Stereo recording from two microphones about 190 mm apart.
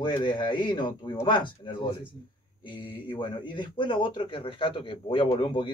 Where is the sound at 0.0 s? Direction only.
25° left (ahead or behind).